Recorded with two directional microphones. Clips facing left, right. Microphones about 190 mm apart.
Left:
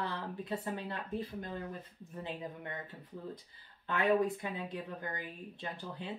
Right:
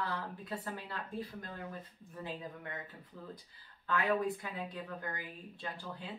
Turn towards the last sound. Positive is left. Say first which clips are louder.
# left 1 dB
turn(degrees=20)  # may be behind; listen again after turning